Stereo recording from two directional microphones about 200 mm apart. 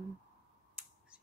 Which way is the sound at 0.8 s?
5° right (ahead or behind).